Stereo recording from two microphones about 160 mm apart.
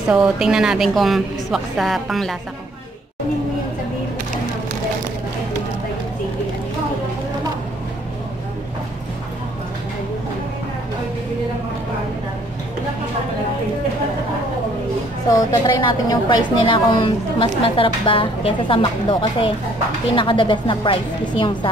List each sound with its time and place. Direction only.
0.1 s a woman's voice: 5° right (ahead or behind)
15.2 s a woman's voice: 25° left (ahead or behind)